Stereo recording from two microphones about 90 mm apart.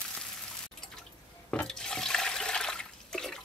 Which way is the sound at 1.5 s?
10° left (ahead or behind).